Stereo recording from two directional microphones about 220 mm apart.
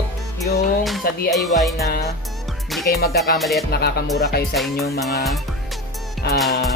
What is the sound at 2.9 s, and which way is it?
Speech, 45° left (ahead or behind).